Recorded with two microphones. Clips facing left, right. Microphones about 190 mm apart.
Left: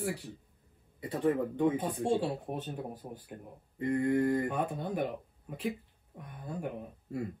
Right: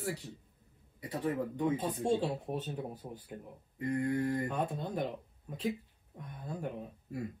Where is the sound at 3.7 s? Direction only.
25° left (ahead or behind).